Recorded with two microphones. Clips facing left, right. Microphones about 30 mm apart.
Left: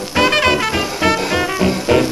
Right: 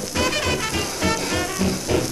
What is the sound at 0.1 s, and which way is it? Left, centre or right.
Music, left.